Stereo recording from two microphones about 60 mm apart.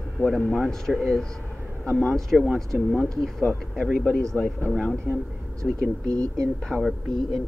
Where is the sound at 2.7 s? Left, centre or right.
Centre.